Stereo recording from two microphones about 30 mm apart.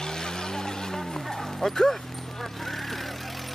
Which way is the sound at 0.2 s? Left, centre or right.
Left.